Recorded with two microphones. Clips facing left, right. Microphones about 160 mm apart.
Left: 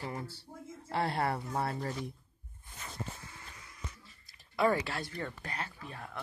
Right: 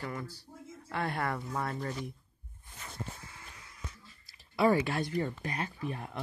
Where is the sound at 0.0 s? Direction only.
25° left (ahead or behind).